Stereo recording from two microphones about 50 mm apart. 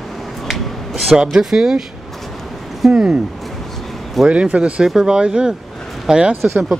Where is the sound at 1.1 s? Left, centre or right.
Centre.